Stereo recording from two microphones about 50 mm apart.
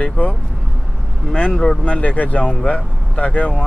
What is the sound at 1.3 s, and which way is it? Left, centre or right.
Speech, left.